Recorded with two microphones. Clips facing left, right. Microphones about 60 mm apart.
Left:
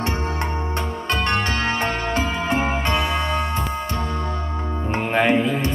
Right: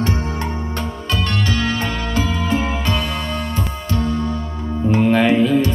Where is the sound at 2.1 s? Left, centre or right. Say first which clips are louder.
Right 4 dB; left.